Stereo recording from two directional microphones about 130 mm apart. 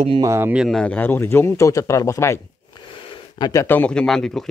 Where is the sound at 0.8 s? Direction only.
15° left (ahead or behind).